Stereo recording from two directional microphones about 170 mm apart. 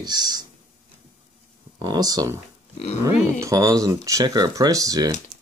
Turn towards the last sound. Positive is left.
turn(degrees=-20)  # may be behind; listen again after turning